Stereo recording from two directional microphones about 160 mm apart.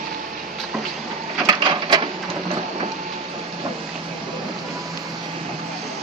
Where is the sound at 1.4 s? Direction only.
30° right (ahead or behind).